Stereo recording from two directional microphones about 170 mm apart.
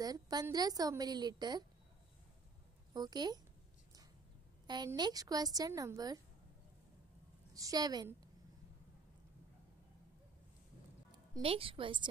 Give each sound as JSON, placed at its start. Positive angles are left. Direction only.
{"t": 0.0, "sound": "a woman's voice", "side_deg": -20}
{"t": 2.9, "sound": "a woman's voice", "side_deg": -25}
{"t": 4.6, "sound": "a woman's voice", "side_deg": -25}
{"t": 7.5, "sound": "a woman's voice", "side_deg": -20}
{"t": 11.4, "sound": "a woman's voice", "side_deg": -35}